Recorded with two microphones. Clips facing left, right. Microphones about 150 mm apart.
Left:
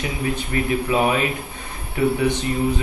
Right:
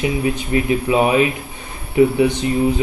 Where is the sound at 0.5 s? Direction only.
15° right (ahead or behind).